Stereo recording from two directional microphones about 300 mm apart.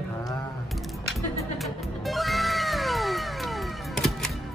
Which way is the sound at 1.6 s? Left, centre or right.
Centre.